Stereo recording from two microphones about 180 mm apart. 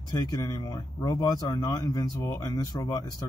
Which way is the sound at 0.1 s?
20° left (ahead or behind).